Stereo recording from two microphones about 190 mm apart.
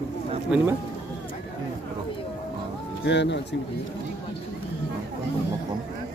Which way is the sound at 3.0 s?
65° left (ahead or behind).